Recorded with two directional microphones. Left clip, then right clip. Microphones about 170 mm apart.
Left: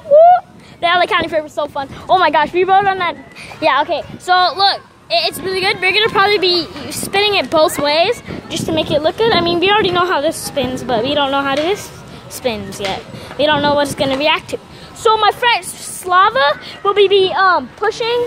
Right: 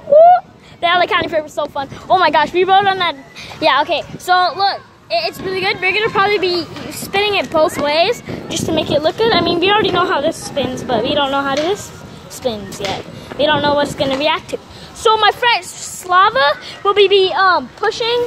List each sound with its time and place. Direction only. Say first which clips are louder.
0.1 s a sound: even; 10° left (ahead or behind)
0.7 s speech: even; 20° left (ahead or behind)
2.3 s speech: even; 5° left (ahead or behind)
4.4 s speech: left 2 dB; 50° left (ahead or behind)
8.0 s a woman's voice: even; 15° left (ahead or behind); by 14.6 s 40° left (ahead or behind)
15.0 s a woman's voice: even; 15° left (ahead or behind)
17.2 s speech: even; 30° left (ahead or behind)